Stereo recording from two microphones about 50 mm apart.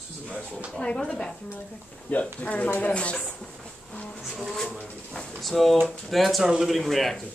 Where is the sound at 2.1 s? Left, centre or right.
Left.